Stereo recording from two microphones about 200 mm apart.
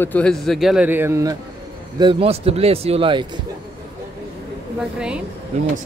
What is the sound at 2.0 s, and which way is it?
Speech, 30° right (ahead or behind).